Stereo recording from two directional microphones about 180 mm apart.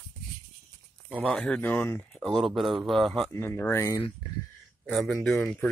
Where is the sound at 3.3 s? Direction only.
15° left (ahead or behind).